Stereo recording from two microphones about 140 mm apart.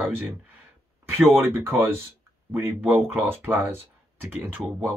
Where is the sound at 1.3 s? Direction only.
15° right (ahead or behind).